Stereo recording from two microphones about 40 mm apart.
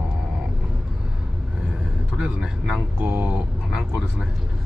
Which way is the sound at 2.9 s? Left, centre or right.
Right.